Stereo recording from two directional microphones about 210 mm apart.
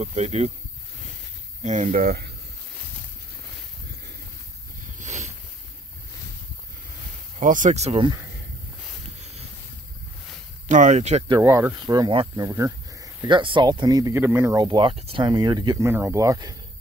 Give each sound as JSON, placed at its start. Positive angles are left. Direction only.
{"t": 0.0, "sound": "speech", "side_deg": -30}
{"t": 1.6, "sound": "speech", "side_deg": -35}
{"t": 4.9, "sound": "a sound", "side_deg": -35}
{"t": 7.3, "sound": "speech", "side_deg": -35}
{"t": 10.7, "sound": "speech", "side_deg": -35}
{"t": 11.3, "sound": "speech", "side_deg": -15}